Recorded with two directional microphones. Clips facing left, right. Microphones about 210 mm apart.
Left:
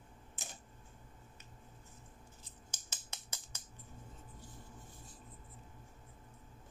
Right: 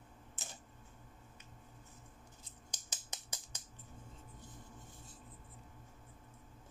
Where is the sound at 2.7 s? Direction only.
15° right (ahead or behind).